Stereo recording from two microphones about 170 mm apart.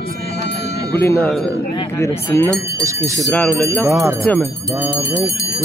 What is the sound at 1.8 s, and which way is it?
Speech, 15° left (ahead or behind).